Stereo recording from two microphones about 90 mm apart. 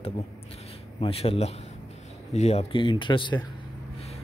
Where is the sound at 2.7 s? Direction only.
65° left (ahead or behind).